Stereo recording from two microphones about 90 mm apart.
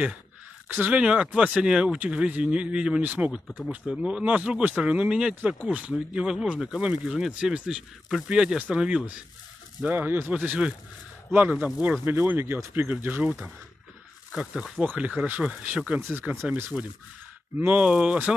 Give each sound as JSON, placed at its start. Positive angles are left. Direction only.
{"t": 0.7, "sound": "speech", "side_deg": -20}
{"t": 9.8, "sound": "speech", "side_deg": -20}
{"t": 14.3, "sound": "speech", "side_deg": -5}
{"t": 17.6, "sound": "speech", "side_deg": -15}